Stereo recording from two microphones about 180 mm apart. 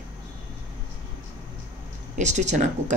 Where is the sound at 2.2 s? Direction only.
40° right (ahead or behind).